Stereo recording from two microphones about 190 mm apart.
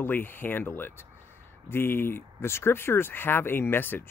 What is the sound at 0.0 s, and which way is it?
Speech, 10° left (ahead or behind).